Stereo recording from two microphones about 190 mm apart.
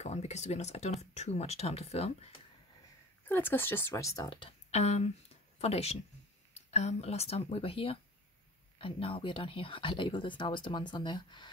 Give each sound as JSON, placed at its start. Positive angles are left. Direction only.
{"t": 0.0, "sound": "a sound", "side_deg": 35}
{"t": 1.1, "sound": "speech", "side_deg": 35}
{"t": 3.3, "sound": "speech", "side_deg": 10}